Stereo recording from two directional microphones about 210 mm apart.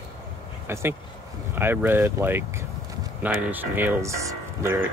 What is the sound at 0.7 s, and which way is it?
Speech, 10° right (ahead or behind).